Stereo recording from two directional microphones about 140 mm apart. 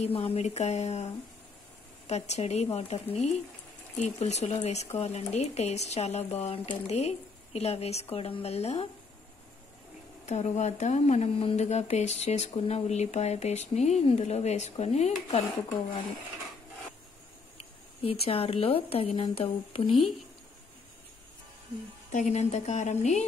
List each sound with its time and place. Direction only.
0.0 s speech: 45° left (ahead or behind)
2.0 s speech: 55° left (ahead or behind)
10.2 s speech: 55° left (ahead or behind)
18.0 s speech: 45° left (ahead or behind)
22.1 s a woman's voice: 55° left (ahead or behind)